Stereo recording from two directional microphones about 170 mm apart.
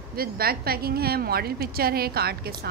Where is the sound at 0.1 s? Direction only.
60° right (ahead or behind).